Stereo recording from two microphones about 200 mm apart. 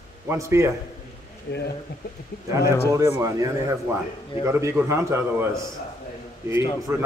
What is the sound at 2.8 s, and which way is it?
A man's voice, 15° right (ahead or behind).